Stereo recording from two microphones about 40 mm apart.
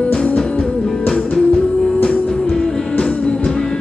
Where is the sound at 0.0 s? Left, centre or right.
Left.